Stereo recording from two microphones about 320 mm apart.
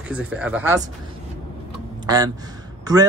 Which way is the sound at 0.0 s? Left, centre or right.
Centre.